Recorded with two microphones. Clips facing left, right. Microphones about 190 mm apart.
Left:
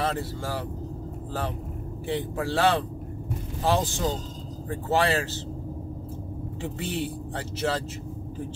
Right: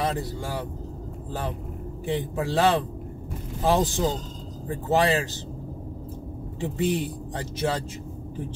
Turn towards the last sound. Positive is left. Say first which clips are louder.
# right 1 dB
turn(degrees=-15)  # may be behind; listen again after turning